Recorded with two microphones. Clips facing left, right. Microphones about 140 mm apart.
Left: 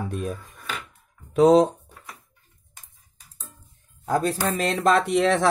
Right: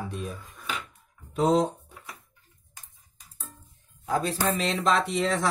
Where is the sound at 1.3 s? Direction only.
85° left.